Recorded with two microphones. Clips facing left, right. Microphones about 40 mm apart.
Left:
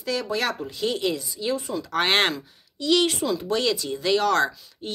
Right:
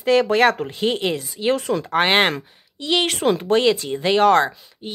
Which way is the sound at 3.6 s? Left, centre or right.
Right.